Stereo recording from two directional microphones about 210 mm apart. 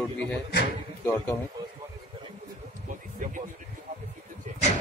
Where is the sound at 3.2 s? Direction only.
40° right (ahead or behind).